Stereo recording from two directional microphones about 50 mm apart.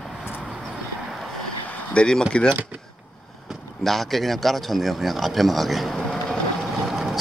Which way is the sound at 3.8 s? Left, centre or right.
Centre.